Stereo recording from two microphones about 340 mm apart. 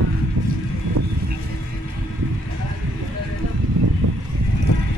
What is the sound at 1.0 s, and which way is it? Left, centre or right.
Vehicle, right.